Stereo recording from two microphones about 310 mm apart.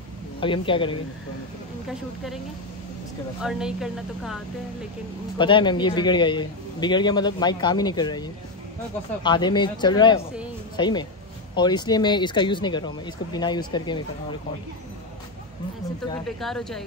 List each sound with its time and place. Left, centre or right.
0.4 s a man's voice: centre
3.4 s speech: centre
5.4 s a man's voice: centre
16.3 s speech: centre